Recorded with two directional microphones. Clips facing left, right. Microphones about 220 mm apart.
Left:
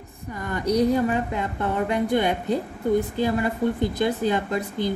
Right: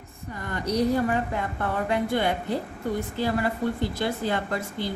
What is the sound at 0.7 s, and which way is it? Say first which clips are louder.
A woman's voice: left 3 dB; 15° left (ahead or behind).